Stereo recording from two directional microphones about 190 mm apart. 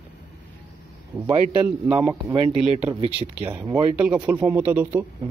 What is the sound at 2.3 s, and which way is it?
Speech, 25° right (ahead or behind).